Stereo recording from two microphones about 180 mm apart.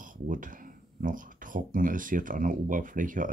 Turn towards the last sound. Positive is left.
turn(degrees=-50)  # may be behind; listen again after turning